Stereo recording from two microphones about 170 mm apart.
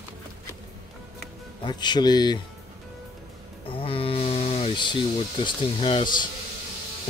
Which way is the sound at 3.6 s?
30° left (ahead or behind).